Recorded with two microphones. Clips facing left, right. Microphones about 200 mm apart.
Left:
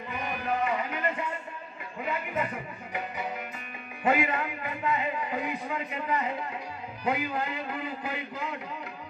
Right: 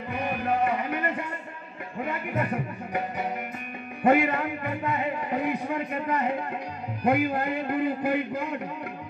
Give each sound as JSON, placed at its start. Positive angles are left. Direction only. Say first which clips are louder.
{"t": 0.7, "sound": "music", "louder": "right 3 dB", "side_deg": -55}
{"t": 4.0, "sound": "a sound", "louder": "right 5 dB", "side_deg": -55}
{"t": 7.1, "sound": "a man's voice", "louder": "right 6 dB", "side_deg": -55}